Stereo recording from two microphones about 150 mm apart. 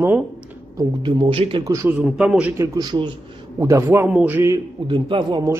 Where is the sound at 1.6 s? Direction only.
20° right (ahead or behind).